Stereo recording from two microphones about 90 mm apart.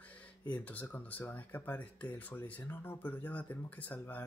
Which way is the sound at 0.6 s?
20° left (ahead or behind).